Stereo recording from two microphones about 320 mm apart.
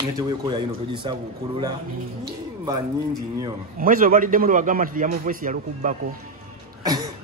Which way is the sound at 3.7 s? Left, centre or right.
Right.